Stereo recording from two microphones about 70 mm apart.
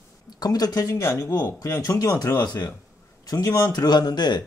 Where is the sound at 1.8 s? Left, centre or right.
Left.